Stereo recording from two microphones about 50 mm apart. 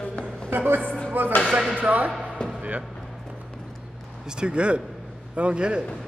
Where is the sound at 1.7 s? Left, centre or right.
Right.